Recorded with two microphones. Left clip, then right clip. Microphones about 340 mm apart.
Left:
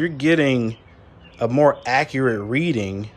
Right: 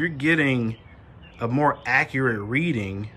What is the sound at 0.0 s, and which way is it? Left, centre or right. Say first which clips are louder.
Speech: left 3 dB; centre.